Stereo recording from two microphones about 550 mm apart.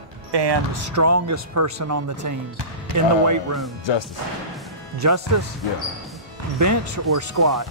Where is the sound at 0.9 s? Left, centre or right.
Right.